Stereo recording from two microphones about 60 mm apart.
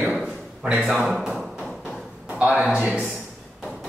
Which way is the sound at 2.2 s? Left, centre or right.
Right.